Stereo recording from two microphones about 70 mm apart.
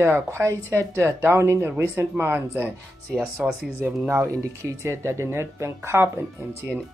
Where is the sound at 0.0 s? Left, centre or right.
Right.